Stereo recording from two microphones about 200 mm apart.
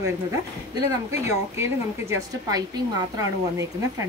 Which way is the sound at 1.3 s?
15° right (ahead or behind).